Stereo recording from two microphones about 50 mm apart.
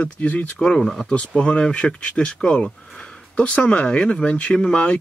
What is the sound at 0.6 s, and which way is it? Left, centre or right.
Speech, centre.